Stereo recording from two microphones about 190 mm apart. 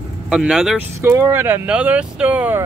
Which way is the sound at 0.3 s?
Centre (ahead or behind).